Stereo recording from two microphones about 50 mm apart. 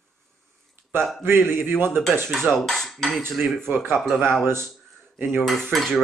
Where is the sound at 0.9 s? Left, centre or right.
Right.